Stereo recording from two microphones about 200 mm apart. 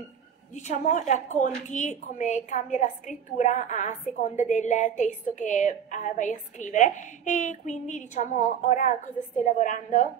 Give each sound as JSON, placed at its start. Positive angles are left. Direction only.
{"t": 0.6, "sound": "a woman's voice", "side_deg": 35}